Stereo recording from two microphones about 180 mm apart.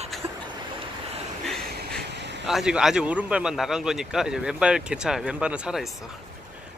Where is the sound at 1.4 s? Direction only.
Centre (ahead or behind).